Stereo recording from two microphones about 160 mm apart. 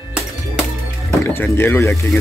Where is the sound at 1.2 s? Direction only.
15° left (ahead or behind).